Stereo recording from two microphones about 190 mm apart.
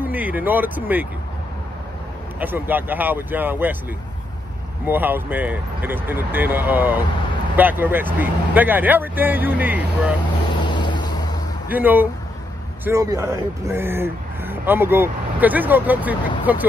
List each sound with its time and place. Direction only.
0.0 s speech: 10° right (ahead or behind)
2.4 s speech: 10° right (ahead or behind)
4.8 s speech: 10° right (ahead or behind)
10.6 s vehicle: 25° left (ahead or behind)
11.7 s speech: 10° right (ahead or behind)